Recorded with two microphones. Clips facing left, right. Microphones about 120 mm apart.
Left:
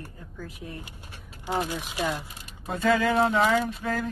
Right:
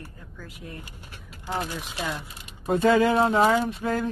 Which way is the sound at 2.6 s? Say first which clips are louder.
Right 4 dB; 30° right (ahead or behind).